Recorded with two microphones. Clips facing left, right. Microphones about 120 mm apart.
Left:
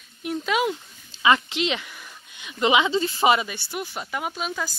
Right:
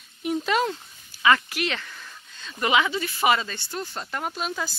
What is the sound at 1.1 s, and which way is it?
Speech, 20° left (ahead or behind).